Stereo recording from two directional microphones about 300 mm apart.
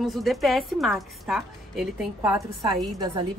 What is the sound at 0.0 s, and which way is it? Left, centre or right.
A woman's voice, centre.